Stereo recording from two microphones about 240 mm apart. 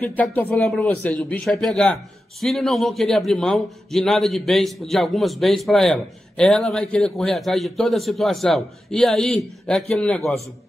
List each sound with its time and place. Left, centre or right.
0.0 s a man's voice: centre